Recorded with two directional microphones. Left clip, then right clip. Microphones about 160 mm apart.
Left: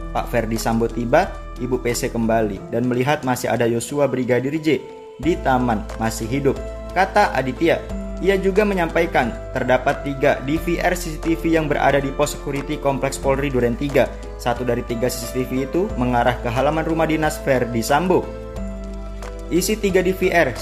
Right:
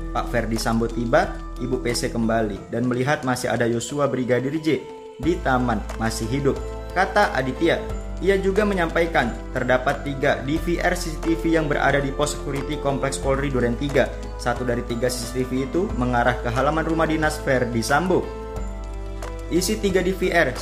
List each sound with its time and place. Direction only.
0.1 s speech: 20° left (ahead or behind)
19.5 s speech: 15° left (ahead or behind)